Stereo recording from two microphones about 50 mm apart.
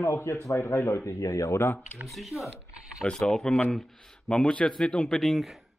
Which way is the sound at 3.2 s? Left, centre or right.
Centre.